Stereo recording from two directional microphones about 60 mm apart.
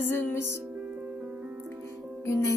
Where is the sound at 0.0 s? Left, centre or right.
Left.